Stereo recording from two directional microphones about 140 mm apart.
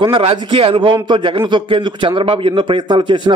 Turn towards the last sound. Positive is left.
turn(degrees=-35)  # may be behind; listen again after turning